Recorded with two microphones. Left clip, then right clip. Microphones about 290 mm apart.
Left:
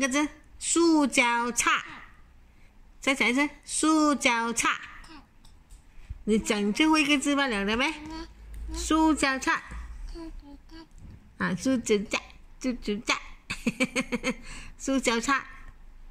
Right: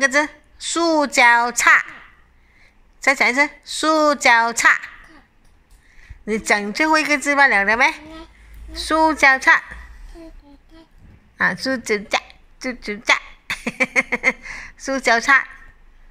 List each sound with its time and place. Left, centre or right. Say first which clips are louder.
0.0 s a woman's voice: right 10 dB; centre
3.0 s a woman's voice: right 9 dB; centre
6.7 s a woman's voice: right 3 dB; centre
11.3 s speech: right 9 dB; centre
13.5 s a sound: right 7 dB; centre
13.9 s a woman's voice: right 12 dB; centre